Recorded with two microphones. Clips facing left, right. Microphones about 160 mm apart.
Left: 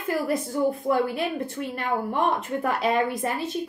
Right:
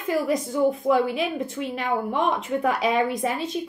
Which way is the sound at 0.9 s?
20° right (ahead or behind).